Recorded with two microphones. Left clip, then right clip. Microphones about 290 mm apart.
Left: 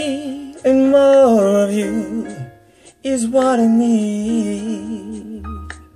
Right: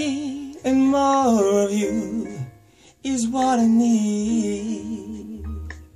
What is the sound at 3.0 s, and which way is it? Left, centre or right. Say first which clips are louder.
Music: left 6 dB; centre.